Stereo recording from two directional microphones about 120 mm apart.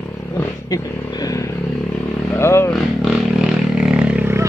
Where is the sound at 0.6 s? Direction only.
30° left (ahead or behind).